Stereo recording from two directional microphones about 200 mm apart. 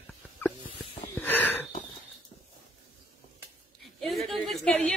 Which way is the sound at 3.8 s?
Centre (ahead or behind).